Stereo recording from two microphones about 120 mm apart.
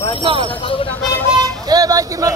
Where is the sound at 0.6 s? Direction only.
45° left (ahead or behind).